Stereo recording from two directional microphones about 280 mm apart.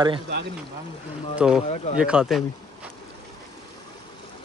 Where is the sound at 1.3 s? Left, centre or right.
Centre.